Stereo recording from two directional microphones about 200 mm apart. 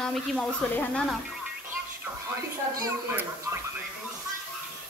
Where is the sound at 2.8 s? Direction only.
15° right (ahead or behind).